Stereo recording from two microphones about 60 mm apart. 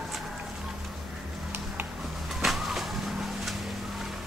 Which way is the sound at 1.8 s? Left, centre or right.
Right.